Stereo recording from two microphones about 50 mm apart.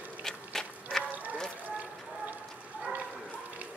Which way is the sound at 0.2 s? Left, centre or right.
Centre.